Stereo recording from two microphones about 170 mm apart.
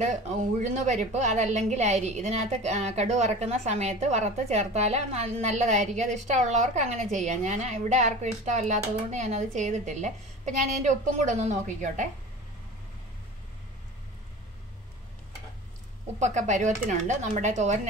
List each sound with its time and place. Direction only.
0.0 s a woman's voice: 45° right (ahead or behind)
16.2 s a woman's voice: 45° right (ahead or behind)